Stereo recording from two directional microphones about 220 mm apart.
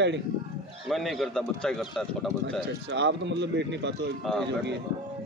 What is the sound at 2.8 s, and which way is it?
Speech, 50° right (ahead or behind).